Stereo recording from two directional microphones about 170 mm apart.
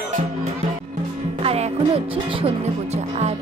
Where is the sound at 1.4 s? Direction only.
35° right (ahead or behind).